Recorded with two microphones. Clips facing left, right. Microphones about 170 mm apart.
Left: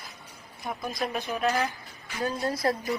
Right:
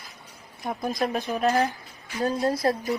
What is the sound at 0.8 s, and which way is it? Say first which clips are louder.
Speech: right 5 dB; 45° right (ahead or behind).